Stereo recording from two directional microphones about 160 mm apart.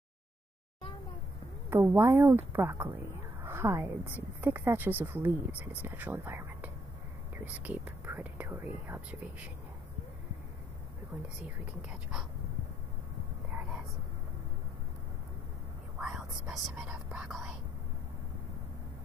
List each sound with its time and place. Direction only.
1.7 s a woman's voice: 15° right (ahead or behind)
16.0 s speech: 5° right (ahead or behind)